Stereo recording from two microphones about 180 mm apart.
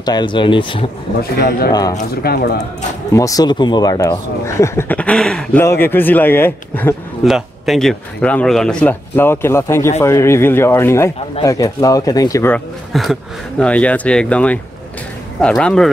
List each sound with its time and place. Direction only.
0.0 s speech: 25° left (ahead or behind)
2.2 s speech: 60° left (ahead or behind)
3.1 s speech: 20° left (ahead or behind)
7.2 s speech: centre (ahead or behind); by 12.5 s 20° left (ahead or behind)
12.5 s speech: centre (ahead or behind)